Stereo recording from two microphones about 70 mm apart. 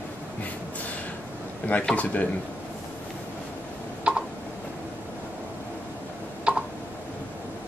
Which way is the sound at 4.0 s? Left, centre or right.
Centre.